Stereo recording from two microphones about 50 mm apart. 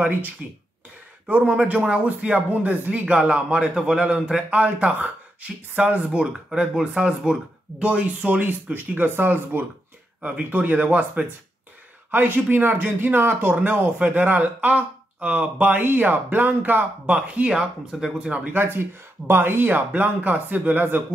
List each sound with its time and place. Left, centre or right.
0.4 s a man's voice: right
10.2 s speech: right
13.6 s speech: right
15.7 s speech: right
17.0 s a man's voice: right
18.5 s speech: right
19.9 s speech: right